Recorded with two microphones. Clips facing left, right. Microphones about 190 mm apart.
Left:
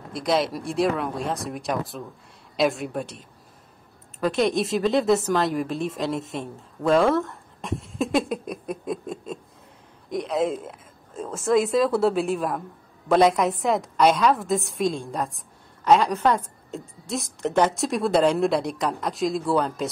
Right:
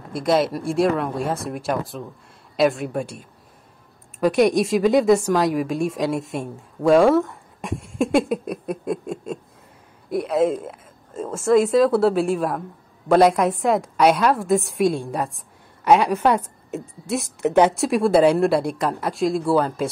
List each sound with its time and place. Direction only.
0.1 s speech: centre (ahead or behind)
4.2 s a woman's voice: 15° right (ahead or behind)
15.0 s a woman's voice: 10° right (ahead or behind)
17.7 s speech: centre (ahead or behind)